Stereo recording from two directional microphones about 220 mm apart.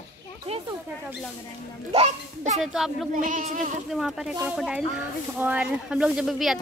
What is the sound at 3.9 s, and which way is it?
Speech, centre (ahead or behind).